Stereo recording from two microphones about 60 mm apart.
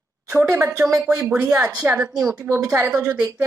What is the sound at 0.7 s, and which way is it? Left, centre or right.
Speech, right.